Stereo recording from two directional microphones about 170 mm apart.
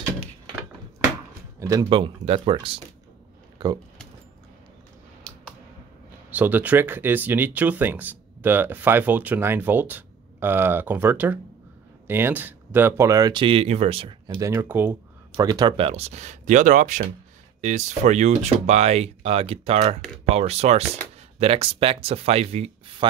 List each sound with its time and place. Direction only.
1.6 s speech: 20° right (ahead or behind)
1.9 s speech: 30° right (ahead or behind)
6.3 s speech: 10° right (ahead or behind); by 23.0 s 35° right (ahead or behind)